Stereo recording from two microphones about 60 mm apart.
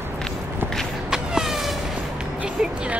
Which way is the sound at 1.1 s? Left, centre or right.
Centre.